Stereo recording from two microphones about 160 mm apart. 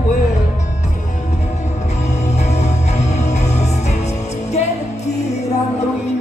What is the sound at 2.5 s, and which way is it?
Music, 45° left (ahead or behind).